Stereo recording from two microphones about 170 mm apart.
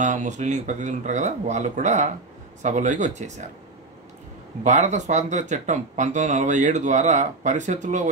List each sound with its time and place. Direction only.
0.0 s speech: 45° right (ahead or behind)
4.6 s speech: 45° right (ahead or behind)